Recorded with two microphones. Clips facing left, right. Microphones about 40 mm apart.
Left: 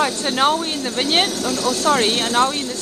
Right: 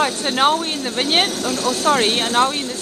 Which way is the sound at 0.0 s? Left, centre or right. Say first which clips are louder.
Right 1 dB; centre.